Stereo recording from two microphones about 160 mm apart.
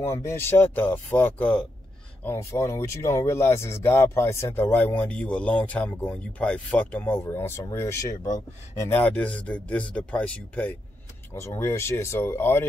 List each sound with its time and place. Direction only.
0.0 s speech: 20° left (ahead or behind)
2.2 s speech: 15° left (ahead or behind)